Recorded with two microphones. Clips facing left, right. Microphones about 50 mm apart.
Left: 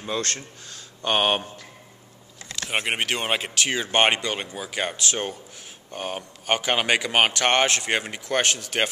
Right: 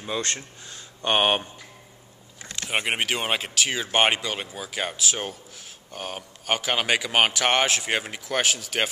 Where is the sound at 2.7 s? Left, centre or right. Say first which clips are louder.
Even; centre.